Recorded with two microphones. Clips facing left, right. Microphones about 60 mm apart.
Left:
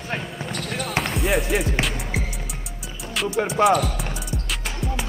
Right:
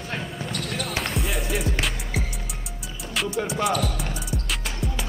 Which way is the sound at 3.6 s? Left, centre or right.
Left.